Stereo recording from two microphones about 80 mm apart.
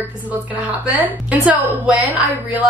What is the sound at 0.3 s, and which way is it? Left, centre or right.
A woman's voice, centre.